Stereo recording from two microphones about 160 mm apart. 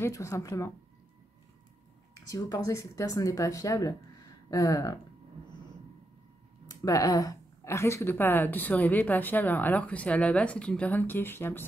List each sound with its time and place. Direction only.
0.0 s speech: 20° left (ahead or behind)
2.3 s speech: 20° left (ahead or behind)
6.7 s speech: 20° left (ahead or behind)